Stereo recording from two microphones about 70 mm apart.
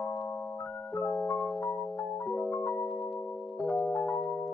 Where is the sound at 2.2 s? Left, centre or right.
Centre.